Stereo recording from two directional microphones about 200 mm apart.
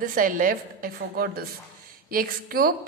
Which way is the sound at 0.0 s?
45° right (ahead or behind).